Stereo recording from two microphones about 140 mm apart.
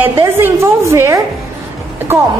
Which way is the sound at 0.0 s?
20° right (ahead or behind).